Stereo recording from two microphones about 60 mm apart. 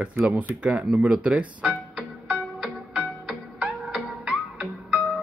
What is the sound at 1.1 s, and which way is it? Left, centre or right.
Music, right.